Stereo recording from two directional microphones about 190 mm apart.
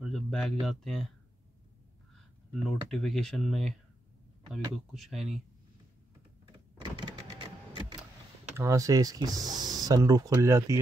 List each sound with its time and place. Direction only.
0.0 s speech: centre (ahead or behind)
2.5 s speech: centre (ahead or behind)
7.0 s a sound: 25° right (ahead or behind)
8.5 s speech: 15° right (ahead or behind)